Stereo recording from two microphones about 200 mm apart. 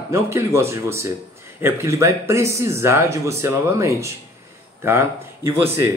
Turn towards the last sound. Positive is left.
turn(degrees=-10)  # may be behind; listen again after turning